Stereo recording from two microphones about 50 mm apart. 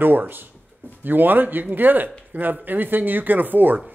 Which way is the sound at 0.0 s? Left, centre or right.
Right.